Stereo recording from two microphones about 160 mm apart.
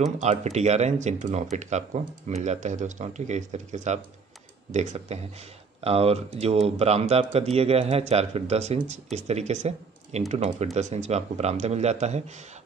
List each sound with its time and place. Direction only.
0.2 s speech: 45° right (ahead or behind)